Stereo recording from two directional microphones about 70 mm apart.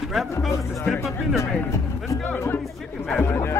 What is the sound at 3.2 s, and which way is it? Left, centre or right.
Speech, left.